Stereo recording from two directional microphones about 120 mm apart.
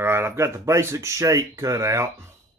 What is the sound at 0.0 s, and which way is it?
A man's voice, 20° right (ahead or behind).